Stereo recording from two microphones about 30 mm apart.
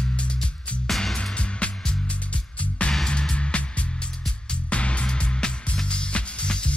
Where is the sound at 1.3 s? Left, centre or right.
Left.